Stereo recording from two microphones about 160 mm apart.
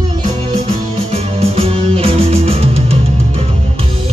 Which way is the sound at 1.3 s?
40° right (ahead or behind).